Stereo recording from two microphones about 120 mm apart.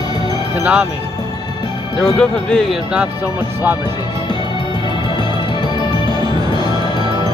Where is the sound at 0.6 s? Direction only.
10° right (ahead or behind).